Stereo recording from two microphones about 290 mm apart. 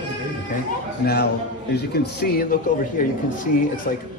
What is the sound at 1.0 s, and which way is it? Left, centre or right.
Speech, left.